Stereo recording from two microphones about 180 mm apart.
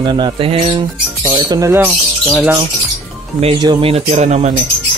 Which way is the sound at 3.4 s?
25° right (ahead or behind).